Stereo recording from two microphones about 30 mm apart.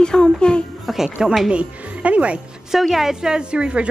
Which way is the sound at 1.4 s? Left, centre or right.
Right.